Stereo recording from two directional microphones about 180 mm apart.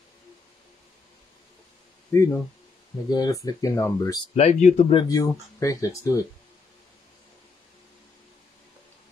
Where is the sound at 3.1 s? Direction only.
20° left (ahead or behind).